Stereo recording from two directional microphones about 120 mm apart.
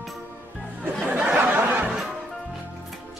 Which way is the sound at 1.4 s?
15° right (ahead or behind).